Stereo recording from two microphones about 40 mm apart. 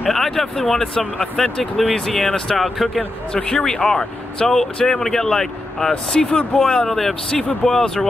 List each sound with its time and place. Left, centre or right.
0.0 s speech: centre
0.9 s speech: left
1.3 s speech: centre
2.5 s speech: centre
3.0 s speech: left
6.9 s speech: centre